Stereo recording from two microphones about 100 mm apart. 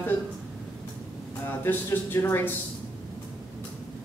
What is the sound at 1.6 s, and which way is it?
Speech, 20° left (ahead or behind).